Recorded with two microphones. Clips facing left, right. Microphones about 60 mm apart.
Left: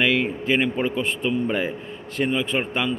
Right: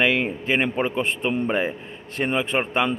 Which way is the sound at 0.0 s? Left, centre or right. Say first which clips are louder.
Even; right.